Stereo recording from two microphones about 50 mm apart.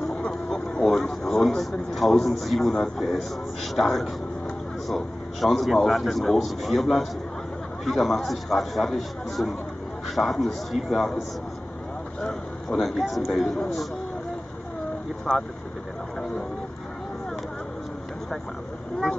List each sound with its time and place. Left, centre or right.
0.3 s a sound: centre
2.7 s a man's voice: centre
12.2 s vehicle: centre
12.7 s speech: centre